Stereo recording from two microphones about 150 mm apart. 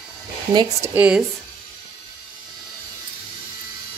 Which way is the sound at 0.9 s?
10° right (ahead or behind).